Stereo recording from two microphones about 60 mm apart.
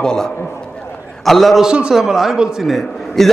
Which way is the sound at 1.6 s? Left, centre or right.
Centre.